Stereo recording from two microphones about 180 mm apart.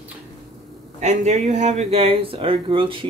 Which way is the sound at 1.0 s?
40° right (ahead or behind).